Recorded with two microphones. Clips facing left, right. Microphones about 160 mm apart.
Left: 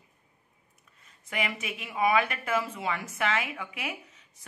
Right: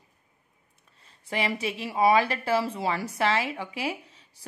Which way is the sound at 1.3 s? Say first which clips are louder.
Right 5 dB; 30° right (ahead or behind).